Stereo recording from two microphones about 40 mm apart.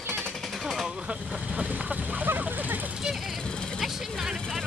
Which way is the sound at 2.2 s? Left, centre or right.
Right.